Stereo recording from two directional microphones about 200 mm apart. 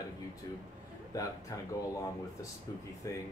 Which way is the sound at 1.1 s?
15° left (ahead or behind).